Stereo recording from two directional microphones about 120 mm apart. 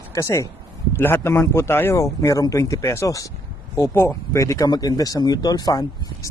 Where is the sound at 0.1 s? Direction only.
25° left (ahead or behind).